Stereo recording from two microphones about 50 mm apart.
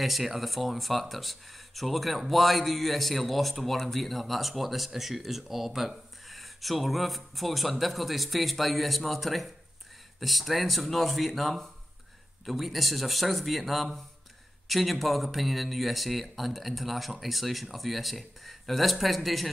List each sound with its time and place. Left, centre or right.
0.0 s speech: centre